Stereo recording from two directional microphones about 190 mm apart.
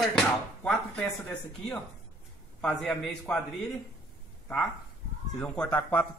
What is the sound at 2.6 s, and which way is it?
Speech, 5° left (ahead or behind).